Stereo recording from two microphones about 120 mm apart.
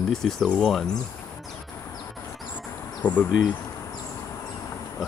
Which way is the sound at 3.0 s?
15° left (ahead or behind).